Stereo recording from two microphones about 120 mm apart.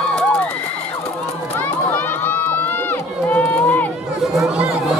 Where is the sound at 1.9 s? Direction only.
15° left (ahead or behind).